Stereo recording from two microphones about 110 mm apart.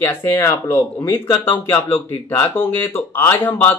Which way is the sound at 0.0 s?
20° left (ahead or behind).